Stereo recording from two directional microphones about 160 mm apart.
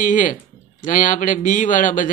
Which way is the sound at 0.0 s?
55° left (ahead or behind).